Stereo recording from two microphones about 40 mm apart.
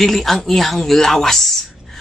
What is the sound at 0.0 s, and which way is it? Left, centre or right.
A woman's voice, centre.